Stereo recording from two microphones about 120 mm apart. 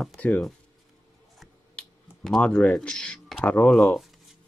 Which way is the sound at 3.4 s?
10° left (ahead or behind).